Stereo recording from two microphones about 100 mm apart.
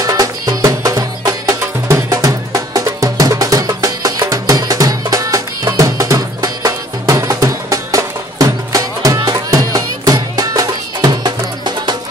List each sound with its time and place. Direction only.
0.0 s music: 35° right (ahead or behind)